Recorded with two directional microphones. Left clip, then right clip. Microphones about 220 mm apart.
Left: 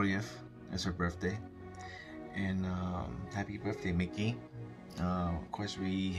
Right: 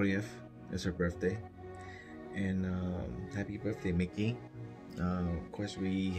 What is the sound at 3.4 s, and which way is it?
Speech, centre (ahead or behind).